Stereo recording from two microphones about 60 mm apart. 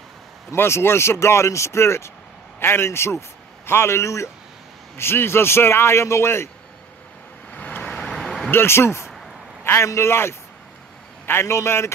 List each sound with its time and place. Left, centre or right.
0.6 s a man's voice: left
4.9 s speech: left
7.5 s vehicle: left
8.0 s vehicle: centre
8.5 s speech: left
9.0 s a sound: centre
9.8 s speech: left